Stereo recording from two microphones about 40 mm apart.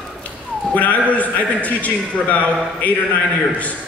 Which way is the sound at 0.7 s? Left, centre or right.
Left.